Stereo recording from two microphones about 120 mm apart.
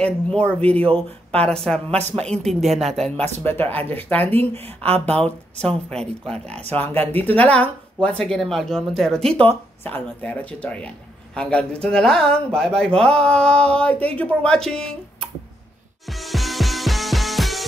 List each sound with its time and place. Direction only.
0.0 s speech: 10° left (ahead or behind)
2.0 s speech: 65° right (ahead or behind)
2.2 s speech: 5° left (ahead or behind)
3.4 s speech: 15° left (ahead or behind)
16.1 s music: centre (ahead or behind)